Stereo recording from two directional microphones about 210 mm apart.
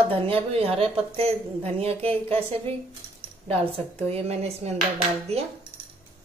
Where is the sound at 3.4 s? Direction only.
30° right (ahead or behind).